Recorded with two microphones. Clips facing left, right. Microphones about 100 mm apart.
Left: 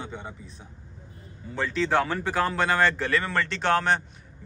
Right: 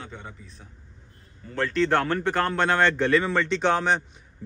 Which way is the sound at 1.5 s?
5° left (ahead or behind).